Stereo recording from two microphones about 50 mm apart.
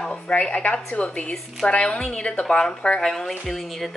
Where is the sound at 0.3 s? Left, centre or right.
Left.